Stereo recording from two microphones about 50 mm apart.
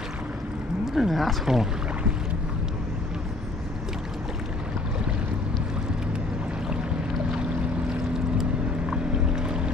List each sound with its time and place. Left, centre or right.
0.9 s speech: centre
8.9 s boat: centre